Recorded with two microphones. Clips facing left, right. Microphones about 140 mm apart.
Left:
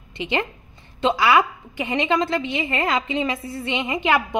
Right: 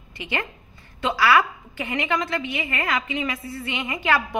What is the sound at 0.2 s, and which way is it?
A woman's voice, 25° left (ahead or behind).